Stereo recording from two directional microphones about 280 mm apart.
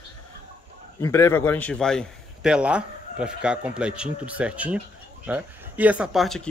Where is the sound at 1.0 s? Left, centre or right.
Centre.